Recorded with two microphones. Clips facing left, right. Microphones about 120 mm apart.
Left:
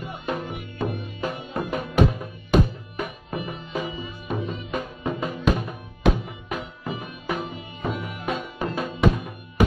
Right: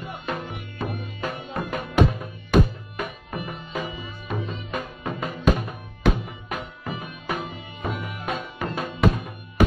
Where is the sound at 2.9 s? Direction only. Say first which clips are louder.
Left 1 dB; 20° left (ahead or behind).